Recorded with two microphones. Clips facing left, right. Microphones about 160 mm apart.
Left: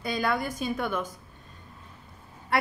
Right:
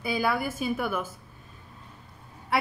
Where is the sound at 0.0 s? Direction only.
5° right (ahead or behind).